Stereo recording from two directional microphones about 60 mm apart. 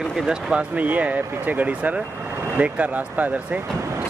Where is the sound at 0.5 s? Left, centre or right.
Right.